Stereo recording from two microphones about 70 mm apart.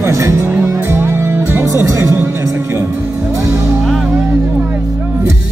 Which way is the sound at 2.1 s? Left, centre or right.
Right.